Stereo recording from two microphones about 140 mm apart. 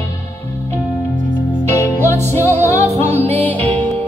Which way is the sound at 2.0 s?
20° left (ahead or behind).